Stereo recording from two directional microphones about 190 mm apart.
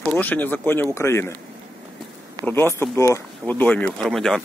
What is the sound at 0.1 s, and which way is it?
Speech, 10° left (ahead or behind).